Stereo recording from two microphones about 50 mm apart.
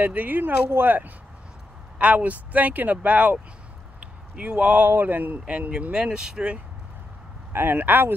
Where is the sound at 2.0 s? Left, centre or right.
Right.